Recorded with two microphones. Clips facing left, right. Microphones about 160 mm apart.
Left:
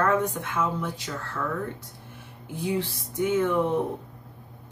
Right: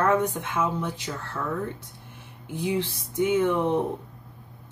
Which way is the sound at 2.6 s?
20° right (ahead or behind).